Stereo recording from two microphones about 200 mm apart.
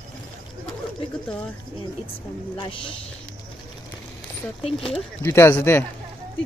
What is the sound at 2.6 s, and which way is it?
Speech, 25° left (ahead or behind).